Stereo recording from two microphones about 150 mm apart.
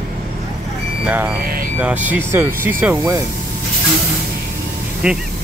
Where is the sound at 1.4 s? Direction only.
80° right.